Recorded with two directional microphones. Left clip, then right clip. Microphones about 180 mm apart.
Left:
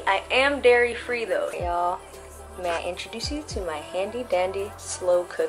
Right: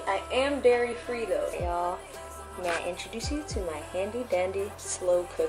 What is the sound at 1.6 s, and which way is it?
A woman's voice, 15° left (ahead or behind).